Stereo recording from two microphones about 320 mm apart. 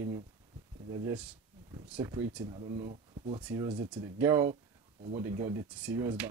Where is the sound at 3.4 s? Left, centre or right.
Centre.